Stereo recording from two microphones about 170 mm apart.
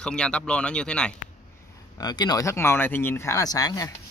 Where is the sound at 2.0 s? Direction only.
25° left (ahead or behind).